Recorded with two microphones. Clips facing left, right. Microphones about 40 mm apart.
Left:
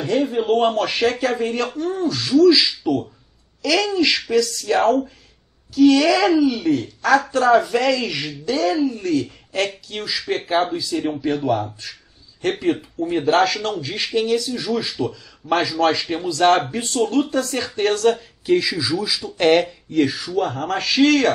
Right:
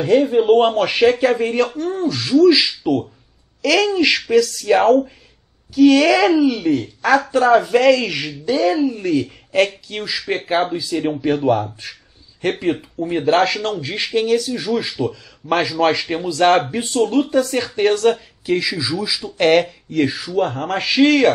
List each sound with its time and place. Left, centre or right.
0.0 s a man's voice: right
1.2 s speech: centre
10.8 s speech: centre
11.1 s a man's voice: right
11.8 s a sound: centre
12.5 s speech: centre
14.4 s speech: centre
16.7 s speech: centre